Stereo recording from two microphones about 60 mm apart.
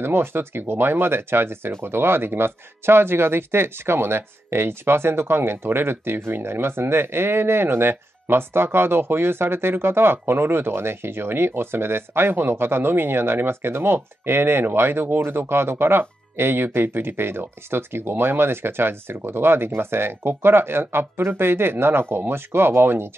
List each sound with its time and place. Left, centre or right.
0.0 s speech: right